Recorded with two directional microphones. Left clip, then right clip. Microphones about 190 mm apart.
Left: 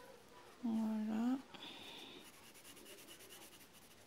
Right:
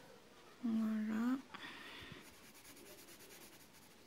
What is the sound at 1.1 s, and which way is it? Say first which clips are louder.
Speech: even; centre (ahead or behind).